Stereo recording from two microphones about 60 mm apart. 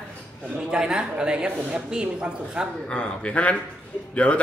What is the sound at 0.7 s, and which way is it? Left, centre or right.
A woman's voice, centre.